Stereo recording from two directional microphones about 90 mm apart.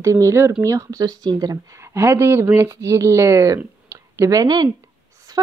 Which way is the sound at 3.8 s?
35° right (ahead or behind).